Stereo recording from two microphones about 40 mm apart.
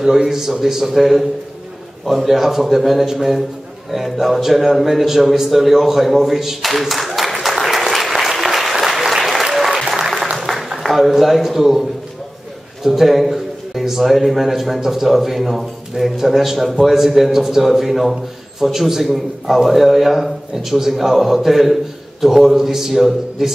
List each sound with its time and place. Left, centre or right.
0.0 s a man's voice: centre
8.8 s applause: centre
10.3 s a sound: centre
11.0 s a man's voice: centre